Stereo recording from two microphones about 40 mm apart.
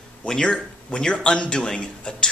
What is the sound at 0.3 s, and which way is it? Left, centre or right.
A man's voice, centre.